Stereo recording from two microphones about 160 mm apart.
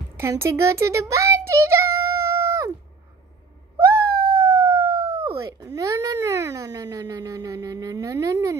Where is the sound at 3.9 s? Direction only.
75° right (ahead or behind).